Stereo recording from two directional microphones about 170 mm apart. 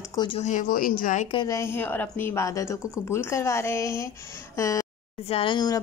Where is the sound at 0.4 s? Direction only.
45° left (ahead or behind).